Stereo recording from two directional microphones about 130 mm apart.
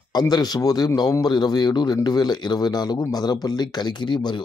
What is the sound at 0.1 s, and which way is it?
Speech, 30° left (ahead or behind).